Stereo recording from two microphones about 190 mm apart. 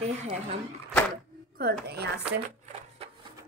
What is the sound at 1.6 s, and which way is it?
Speech, 55° right (ahead or behind).